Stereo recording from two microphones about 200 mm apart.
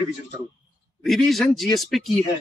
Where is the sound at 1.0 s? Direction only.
Centre (ahead or behind).